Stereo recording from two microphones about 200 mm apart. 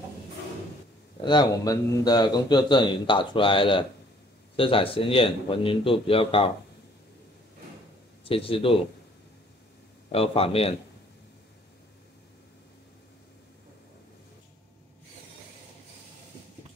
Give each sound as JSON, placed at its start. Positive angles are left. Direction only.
{"t": 1.2, "sound": "a man's voice", "side_deg": 20}
{"t": 8.2, "sound": "a man's voice", "side_deg": 25}
{"t": 10.1, "sound": "a man's voice", "side_deg": 30}